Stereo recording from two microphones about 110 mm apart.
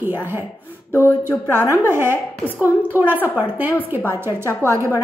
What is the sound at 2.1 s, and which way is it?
Speech, 20° left (ahead or behind).